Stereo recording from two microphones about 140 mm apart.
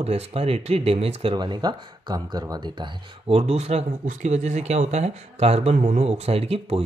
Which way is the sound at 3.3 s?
50° right (ahead or behind).